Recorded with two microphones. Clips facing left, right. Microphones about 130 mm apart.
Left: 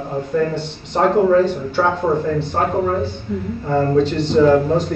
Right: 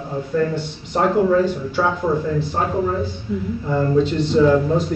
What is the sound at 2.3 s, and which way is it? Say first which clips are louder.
Speech: left 2 dB; 55° left (ahead or behind).